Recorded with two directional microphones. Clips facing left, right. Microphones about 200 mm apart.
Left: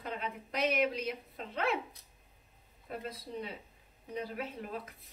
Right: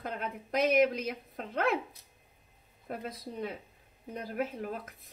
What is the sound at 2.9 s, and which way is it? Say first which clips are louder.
Speech: right 2 dB; 50° right (ahead or behind).